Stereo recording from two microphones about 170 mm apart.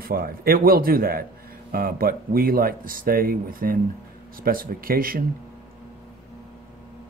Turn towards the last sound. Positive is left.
turn(degrees=-60)  # may be behind; listen again after turning